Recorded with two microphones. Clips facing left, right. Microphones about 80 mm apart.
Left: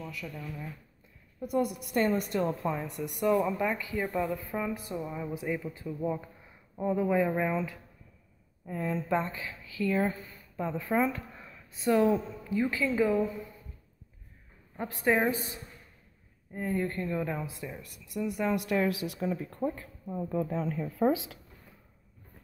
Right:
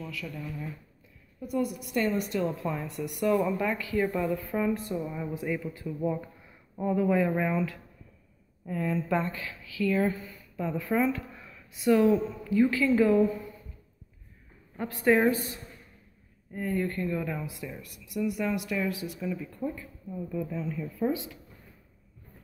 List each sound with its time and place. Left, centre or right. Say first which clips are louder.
0.3 s speech: right 2 dB; centre
1.4 s speech: left 1 dB; left
2.6 s speech: even; centre
4.0 s speech: right 3 dB; centre; by 12.2 s left
12.4 s speech: right 6 dB; left
15.0 s speech: right 4 dB; centre; by 18.6 s left
18.6 s a woman's voice: left 2 dB; left
19.1 s speech: left 1 dB; left
21.1 s speech: left 2 dB; left